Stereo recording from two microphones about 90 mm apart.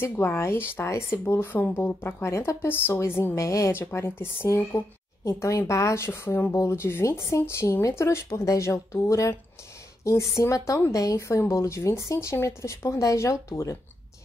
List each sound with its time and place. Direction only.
0.0 s a woman's voice: 25° left (ahead or behind)